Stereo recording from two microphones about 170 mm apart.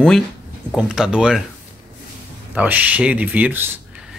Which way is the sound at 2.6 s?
10° right (ahead or behind).